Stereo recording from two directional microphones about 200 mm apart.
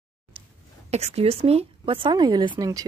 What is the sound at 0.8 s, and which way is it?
A woman's voice, 35° right (ahead or behind).